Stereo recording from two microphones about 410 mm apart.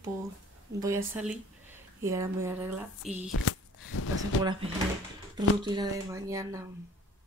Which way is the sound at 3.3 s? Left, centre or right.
Left.